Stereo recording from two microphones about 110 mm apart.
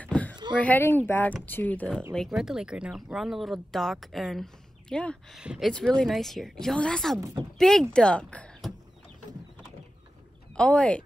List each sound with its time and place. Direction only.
0.0 s a sound: 15° left (ahead or behind)
0.6 s speech: 15° left (ahead or behind)
2.1 s speech: centre (ahead or behind)
5.4 s speech: 10° right (ahead or behind)
5.7 s speech: 5° left (ahead or behind)
7.2 s speech: 30° right (ahead or behind)
7.5 s speech: 5° left (ahead or behind)
10.5 s speech: 10° left (ahead or behind)